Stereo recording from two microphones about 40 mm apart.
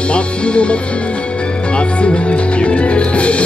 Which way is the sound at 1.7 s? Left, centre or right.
Left.